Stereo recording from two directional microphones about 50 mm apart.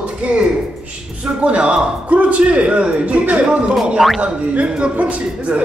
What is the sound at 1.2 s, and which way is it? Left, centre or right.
A man's voice, right.